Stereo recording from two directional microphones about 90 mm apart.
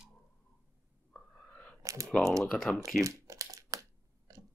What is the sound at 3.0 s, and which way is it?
Crumpling, 35° right (ahead or behind).